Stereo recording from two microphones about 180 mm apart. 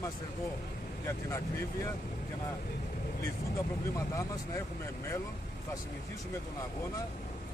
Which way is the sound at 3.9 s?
20° left (ahead or behind).